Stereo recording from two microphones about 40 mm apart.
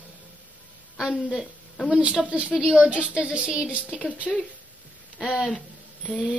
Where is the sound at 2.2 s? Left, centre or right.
Right.